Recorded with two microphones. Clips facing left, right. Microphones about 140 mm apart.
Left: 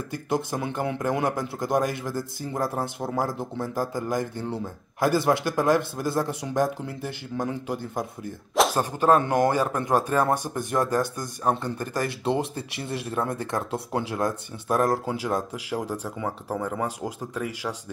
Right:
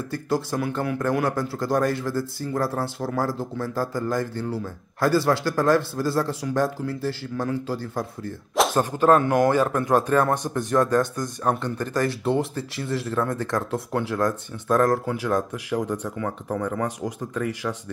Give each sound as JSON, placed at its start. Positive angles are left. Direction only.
{"t": 0.1, "sound": "a man's voice", "side_deg": 20}
{"t": 8.5, "sound": "a sound", "side_deg": 0}
{"t": 8.9, "sound": "a man's voice", "side_deg": 20}